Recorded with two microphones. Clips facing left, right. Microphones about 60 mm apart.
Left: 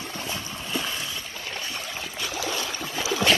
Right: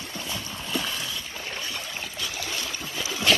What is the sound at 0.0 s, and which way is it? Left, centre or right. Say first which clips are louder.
Boat: left 2 dB; left.